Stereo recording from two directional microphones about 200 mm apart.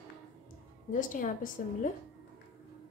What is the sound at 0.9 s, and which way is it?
Speech, 40° left (ahead or behind).